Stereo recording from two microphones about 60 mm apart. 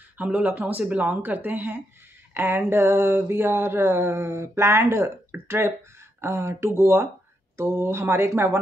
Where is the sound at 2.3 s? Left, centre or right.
Right.